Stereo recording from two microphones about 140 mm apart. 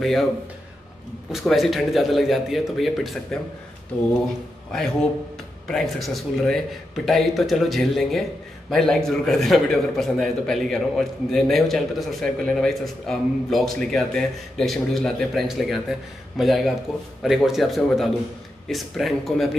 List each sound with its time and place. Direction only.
0.0 s a man's voice: centre (ahead or behind)
1.3 s a man's voice: centre (ahead or behind)
5.7 s a man's voice: centre (ahead or behind)